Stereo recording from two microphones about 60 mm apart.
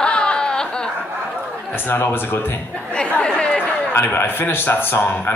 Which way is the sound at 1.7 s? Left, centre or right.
Left.